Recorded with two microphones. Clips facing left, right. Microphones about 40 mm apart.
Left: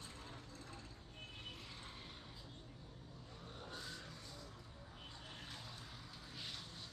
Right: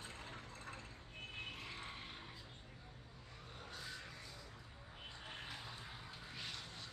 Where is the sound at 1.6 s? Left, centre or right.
Right.